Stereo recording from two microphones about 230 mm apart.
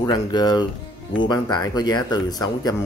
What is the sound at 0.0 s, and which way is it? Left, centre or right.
Speech, centre.